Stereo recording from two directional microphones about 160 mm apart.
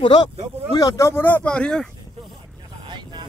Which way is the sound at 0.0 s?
30° left (ahead or behind).